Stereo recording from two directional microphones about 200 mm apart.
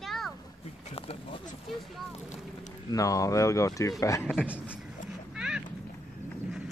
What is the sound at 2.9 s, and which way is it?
Speech, 15° left (ahead or behind).